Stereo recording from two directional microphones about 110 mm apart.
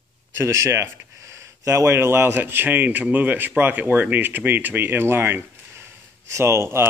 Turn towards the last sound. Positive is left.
turn(degrees=-25)  # may be behind; listen again after turning